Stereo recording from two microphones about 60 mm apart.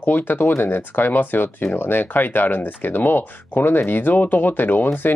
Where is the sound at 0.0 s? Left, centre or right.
Left.